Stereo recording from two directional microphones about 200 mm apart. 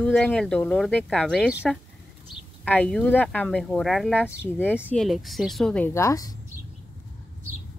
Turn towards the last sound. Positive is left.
turn(degrees=15)  # may be behind; listen again after turning